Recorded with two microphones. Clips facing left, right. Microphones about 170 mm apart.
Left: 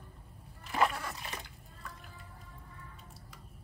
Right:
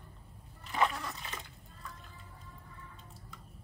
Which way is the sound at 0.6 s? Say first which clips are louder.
Left 1 dB; centre (ahead or behind).